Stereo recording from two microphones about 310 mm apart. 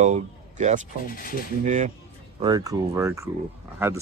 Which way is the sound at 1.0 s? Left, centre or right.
Left.